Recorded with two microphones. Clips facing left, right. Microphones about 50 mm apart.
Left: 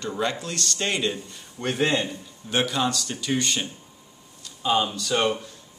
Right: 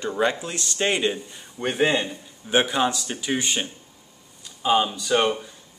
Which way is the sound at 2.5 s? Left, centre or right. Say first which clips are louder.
Right 3 dB; right.